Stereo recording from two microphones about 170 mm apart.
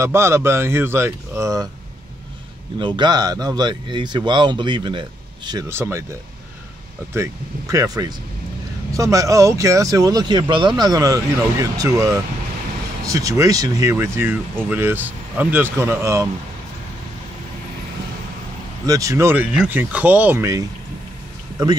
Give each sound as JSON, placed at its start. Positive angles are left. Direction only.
{"t": 0.0, "sound": "speech", "side_deg": -15}
{"t": 2.8, "sound": "speech", "side_deg": -25}
{"t": 7.7, "sound": "speech", "side_deg": -20}
{"t": 18.9, "sound": "speech", "side_deg": -20}